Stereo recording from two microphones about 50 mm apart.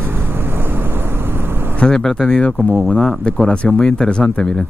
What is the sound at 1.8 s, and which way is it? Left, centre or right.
Speech, centre.